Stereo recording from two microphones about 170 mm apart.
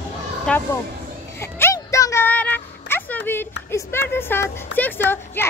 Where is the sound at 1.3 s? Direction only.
15° left (ahead or behind).